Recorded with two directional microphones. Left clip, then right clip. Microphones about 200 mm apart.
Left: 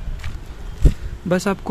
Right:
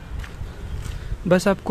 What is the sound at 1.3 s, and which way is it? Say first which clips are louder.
Speech: right 2 dB; 10° right (ahead or behind).